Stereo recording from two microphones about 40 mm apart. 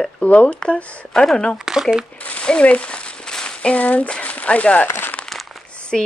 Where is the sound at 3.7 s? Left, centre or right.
Left.